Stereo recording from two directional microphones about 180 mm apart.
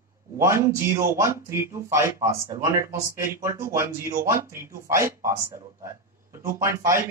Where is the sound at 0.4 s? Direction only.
15° right (ahead or behind).